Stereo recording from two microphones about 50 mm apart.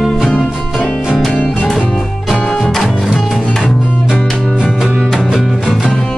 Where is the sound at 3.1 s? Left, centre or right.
Centre.